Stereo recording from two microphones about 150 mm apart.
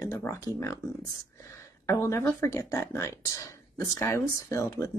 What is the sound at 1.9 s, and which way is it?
Speech, 20° left (ahead or behind).